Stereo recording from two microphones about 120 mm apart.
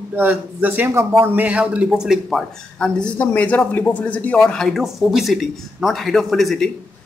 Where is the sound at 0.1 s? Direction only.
15° right (ahead or behind).